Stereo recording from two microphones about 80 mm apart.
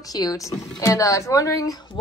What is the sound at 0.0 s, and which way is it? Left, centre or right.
A woman's voice, left.